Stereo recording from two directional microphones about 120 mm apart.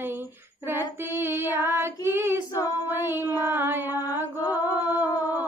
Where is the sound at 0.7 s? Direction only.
20° right (ahead or behind).